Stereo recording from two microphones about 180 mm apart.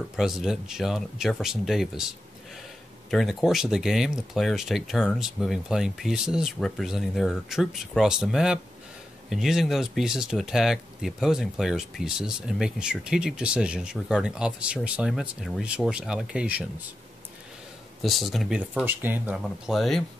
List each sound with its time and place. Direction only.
0.1 s speech: centre (ahead or behind)
18.0 s speech: centre (ahead or behind)